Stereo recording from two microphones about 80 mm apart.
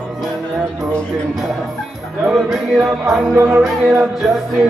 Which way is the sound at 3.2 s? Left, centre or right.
Right.